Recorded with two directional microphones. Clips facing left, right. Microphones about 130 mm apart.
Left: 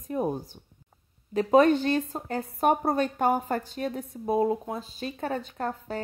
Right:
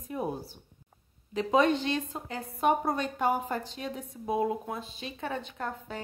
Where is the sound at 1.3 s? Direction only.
45° left (ahead or behind).